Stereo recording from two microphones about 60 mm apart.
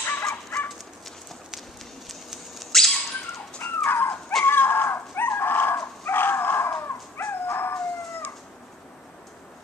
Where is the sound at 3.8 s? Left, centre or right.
Left.